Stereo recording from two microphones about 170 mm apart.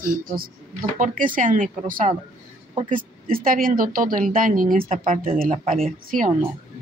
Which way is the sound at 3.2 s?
55° right (ahead or behind).